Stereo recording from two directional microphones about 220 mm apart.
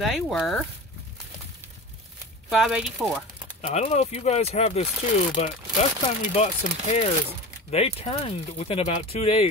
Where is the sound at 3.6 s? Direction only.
30° left (ahead or behind).